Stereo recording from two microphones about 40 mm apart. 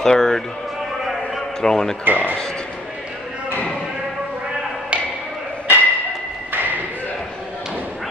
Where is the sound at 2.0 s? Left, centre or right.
Right.